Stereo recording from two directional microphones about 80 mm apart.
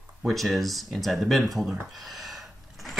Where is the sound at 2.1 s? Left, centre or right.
Centre.